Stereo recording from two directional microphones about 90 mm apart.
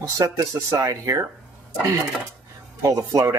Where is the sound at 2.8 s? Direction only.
35° right (ahead or behind).